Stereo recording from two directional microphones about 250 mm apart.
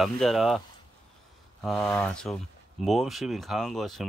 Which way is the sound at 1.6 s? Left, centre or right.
Centre.